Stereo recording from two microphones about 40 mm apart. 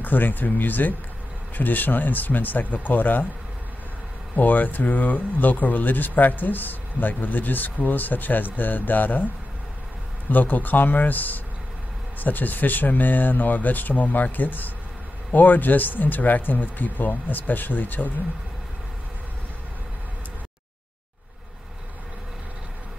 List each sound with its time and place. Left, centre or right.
0.0 s speech: left
4.4 s speech: left
10.3 s speech: left